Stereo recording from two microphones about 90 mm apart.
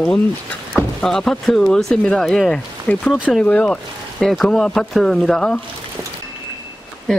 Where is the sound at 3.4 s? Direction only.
15° left (ahead or behind).